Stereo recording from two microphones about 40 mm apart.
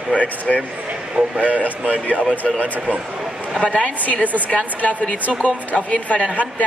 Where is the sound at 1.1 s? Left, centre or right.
Right.